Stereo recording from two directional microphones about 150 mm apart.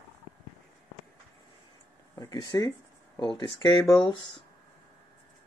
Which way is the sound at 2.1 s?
25° left (ahead or behind).